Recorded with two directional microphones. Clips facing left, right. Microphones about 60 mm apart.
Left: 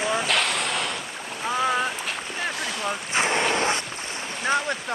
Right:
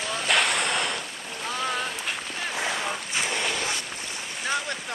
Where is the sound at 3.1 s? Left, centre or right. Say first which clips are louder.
Left 8 dB; left.